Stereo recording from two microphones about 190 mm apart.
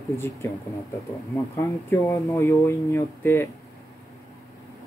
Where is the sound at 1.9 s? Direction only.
10° left (ahead or behind).